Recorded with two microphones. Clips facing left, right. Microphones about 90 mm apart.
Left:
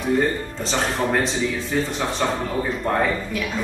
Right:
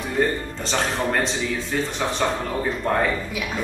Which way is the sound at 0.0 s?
Centre (ahead or behind).